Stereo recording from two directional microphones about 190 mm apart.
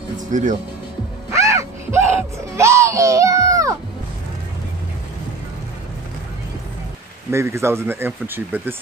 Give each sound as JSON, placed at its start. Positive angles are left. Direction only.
{"t": 0.3, "sound": "speech", "side_deg": -40}
{"t": 1.3, "sound": "a sound", "side_deg": -15}
{"t": 2.5, "sound": "speech", "side_deg": -15}
{"t": 7.2, "sound": "speech", "side_deg": -15}